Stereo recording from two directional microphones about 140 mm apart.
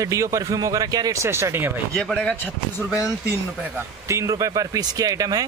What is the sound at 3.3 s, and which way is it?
Speech, 20° right (ahead or behind).